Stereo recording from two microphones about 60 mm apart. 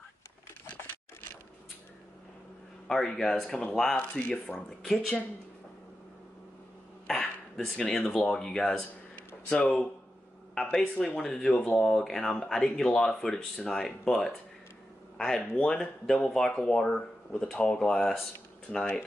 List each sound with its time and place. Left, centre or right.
2.9 s speech: centre
7.7 s speech: centre